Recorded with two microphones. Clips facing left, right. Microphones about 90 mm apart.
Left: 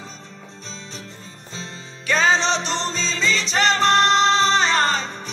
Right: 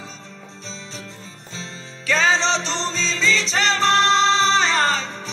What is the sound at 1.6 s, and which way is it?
Music, 20° left (ahead or behind).